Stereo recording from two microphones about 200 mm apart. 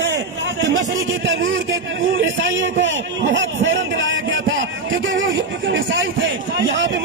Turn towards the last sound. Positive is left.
turn(degrees=-70)  # may be behind; listen again after turning